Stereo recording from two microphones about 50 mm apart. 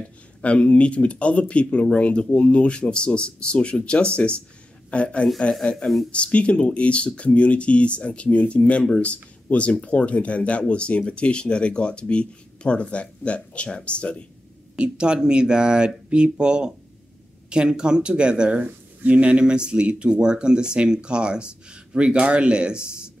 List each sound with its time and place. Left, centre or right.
0.4 s a man's voice: left
14.8 s speech: centre